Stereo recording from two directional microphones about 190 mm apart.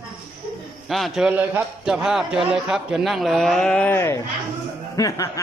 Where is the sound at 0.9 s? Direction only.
Centre (ahead or behind).